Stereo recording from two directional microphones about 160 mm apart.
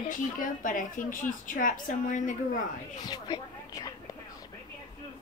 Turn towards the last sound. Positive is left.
turn(degrees=25)  # may be behind; listen again after turning